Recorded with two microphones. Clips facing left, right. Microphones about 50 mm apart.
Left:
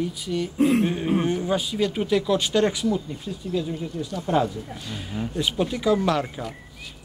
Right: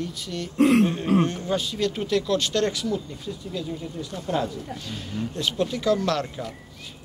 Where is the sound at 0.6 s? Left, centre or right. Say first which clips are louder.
Right 3 dB; right.